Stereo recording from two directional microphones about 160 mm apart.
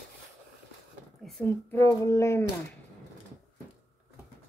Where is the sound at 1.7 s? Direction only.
15° left (ahead or behind).